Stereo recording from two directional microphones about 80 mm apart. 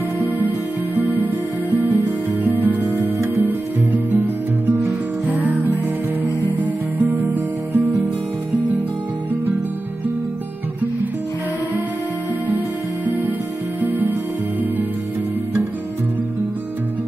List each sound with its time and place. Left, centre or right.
0.9 s music: right
5.2 s music: centre
6.6 s music: right
12.4 s music: right